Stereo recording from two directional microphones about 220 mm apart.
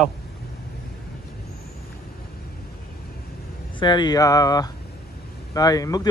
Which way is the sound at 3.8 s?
20° left (ahead or behind).